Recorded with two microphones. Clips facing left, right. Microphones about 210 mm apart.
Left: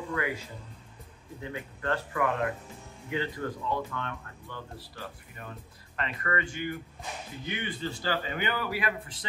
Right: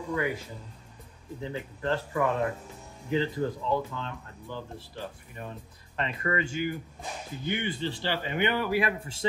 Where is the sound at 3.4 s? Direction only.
20° right (ahead or behind).